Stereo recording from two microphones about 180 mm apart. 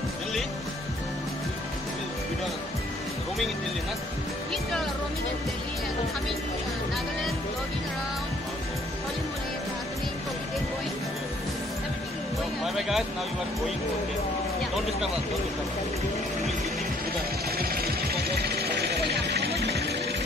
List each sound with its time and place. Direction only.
12.6 s speech: centre (ahead or behind)
17.6 s vehicle: 60° right (ahead or behind)